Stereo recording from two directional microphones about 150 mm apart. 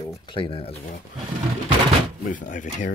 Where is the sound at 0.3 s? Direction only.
35° left (ahead or behind).